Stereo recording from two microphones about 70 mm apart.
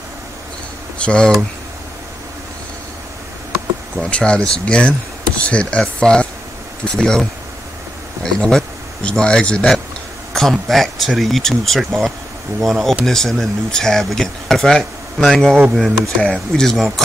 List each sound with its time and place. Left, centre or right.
1.0 s speech: centre
4.0 s speech: centre
10.3 s speech: centre